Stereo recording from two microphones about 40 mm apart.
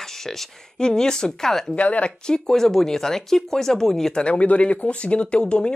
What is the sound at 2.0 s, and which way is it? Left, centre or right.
A woman's voice, left.